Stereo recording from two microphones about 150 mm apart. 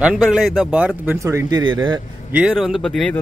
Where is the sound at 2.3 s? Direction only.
5° right (ahead or behind).